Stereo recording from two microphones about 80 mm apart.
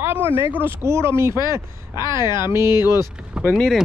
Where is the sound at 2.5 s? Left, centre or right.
Right.